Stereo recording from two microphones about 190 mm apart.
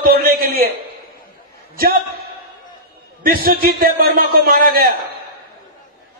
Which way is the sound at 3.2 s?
50° right (ahead or behind).